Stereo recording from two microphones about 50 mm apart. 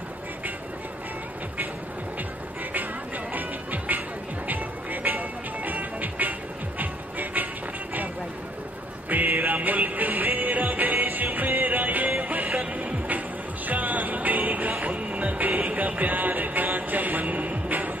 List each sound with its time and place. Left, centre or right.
3.3 s music: right
5.1 s music: right
9.1 s music: right